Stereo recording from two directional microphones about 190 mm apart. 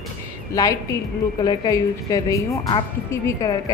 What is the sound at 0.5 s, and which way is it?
A woman's voice, 15° left (ahead or behind).